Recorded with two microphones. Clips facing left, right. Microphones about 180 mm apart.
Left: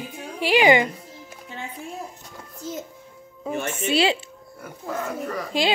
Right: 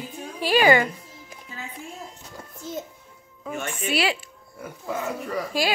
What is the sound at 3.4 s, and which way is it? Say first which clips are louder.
Speech: left 3 dB; 25° left (ahead or behind).